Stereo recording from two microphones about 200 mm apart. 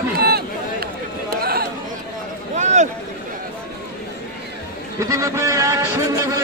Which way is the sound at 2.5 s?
35° right (ahead or behind).